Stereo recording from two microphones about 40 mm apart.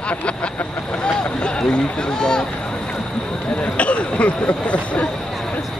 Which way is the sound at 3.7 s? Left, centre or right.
Left.